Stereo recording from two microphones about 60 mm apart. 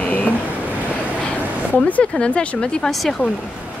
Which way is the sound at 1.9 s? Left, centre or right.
Centre.